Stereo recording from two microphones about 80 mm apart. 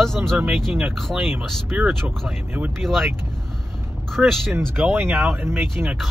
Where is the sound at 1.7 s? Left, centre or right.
Centre.